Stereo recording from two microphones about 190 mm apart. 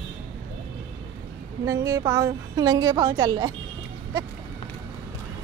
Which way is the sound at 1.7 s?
15° right (ahead or behind).